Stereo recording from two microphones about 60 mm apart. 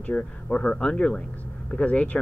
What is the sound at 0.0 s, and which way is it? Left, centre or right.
A man's voice, centre.